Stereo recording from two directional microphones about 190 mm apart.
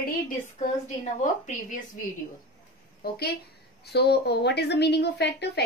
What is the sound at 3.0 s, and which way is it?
A woman's voice, 55° left (ahead or behind).